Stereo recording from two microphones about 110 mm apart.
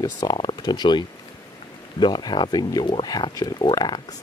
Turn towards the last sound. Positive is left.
turn(degrees=40)  # may be behind; listen again after turning